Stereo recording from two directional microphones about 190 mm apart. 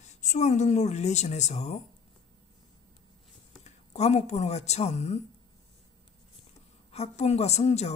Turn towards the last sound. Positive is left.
turn(degrees=35)  # may be behind; listen again after turning